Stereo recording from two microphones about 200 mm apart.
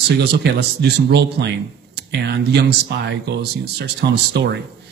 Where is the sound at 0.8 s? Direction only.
55° right (ahead or behind).